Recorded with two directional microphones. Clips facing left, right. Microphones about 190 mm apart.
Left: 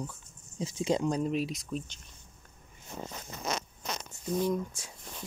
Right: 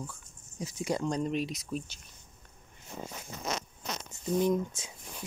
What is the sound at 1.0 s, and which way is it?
Speech, 5° left (ahead or behind).